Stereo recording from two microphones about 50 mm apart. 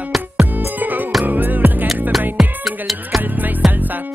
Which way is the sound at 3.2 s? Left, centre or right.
Right.